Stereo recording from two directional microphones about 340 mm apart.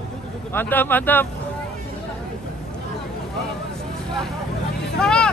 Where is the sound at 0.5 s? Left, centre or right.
Centre.